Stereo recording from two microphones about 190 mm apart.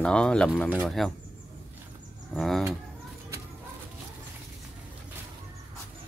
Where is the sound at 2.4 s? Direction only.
Centre (ahead or behind).